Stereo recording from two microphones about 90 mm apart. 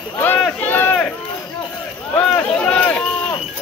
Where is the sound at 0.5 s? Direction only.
20° left (ahead or behind).